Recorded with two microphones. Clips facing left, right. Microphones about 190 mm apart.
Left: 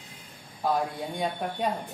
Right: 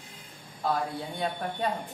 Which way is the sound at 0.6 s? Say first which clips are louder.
Left 2 dB; 15° left (ahead or behind).